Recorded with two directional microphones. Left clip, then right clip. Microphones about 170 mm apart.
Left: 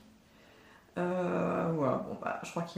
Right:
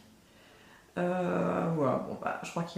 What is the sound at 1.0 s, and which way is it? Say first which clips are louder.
Speech: right 2 dB; 5° right (ahead or behind).